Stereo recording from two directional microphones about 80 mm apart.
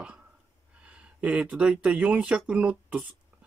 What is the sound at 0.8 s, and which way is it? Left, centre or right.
Speech, centre.